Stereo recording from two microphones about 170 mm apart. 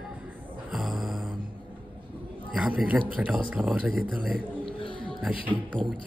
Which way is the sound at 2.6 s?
5° right (ahead or behind).